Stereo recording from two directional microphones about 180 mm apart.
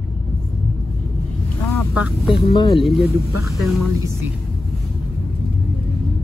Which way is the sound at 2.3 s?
30° left (ahead or behind).